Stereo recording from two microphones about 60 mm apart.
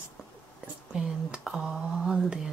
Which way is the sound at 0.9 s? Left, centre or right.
Centre.